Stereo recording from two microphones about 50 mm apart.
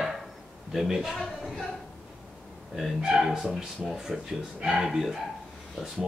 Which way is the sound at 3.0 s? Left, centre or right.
Centre.